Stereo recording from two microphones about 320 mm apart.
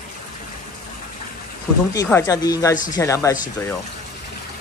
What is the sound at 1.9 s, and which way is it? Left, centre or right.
Speech, centre.